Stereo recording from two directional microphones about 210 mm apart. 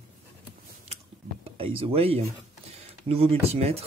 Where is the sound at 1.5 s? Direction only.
25° right (ahead or behind).